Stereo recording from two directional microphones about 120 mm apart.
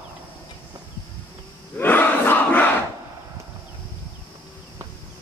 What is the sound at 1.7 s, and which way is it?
Crowd, 15° left (ahead or behind).